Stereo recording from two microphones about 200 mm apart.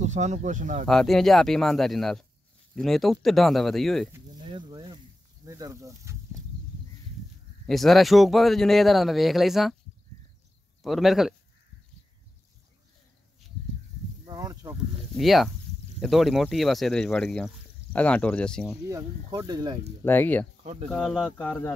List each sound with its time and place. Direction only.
0.0 s speech: 35° right (ahead or behind)
0.8 s speech: centre (ahead or behind)
4.4 s a sound: 25° right (ahead or behind)
5.5 s speech: 15° right (ahead or behind)
7.6 s speech: centre (ahead or behind)
10.8 s speech: centre (ahead or behind)
14.2 s a sound: 20° right (ahead or behind)
15.1 s speech: centre (ahead or behind)
18.9 s speech: 20° right (ahead or behind)
20.1 s speech: 10° left (ahead or behind)